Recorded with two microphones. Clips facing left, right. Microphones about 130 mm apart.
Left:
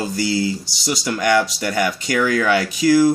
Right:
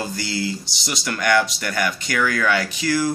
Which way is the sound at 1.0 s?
25° left (ahead or behind).